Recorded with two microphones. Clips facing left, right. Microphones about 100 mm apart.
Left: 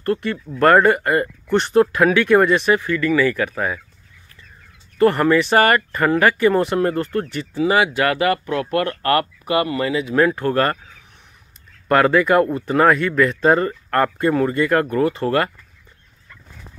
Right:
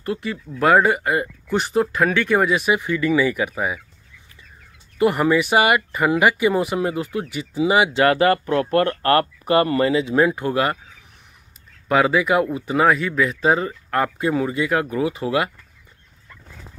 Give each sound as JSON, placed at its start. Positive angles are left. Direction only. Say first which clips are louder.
{"t": 0.0, "sound": "speech", "louder": "left 4 dB", "side_deg": -5}
{"t": 2.8, "sound": "speech", "louder": "left 1 dB", "side_deg": -20}
{"t": 4.9, "sound": "speech", "louder": "left 2 dB", "side_deg": -10}
{"t": 11.9, "sound": "speech", "louder": "left 3 dB", "side_deg": -5}